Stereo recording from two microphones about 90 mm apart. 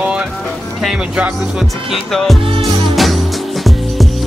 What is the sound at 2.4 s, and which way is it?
Music, 90° right.